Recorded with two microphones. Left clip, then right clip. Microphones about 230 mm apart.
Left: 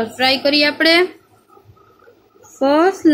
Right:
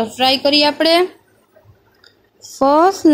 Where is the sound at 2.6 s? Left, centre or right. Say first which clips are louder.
Right 2 dB; centre.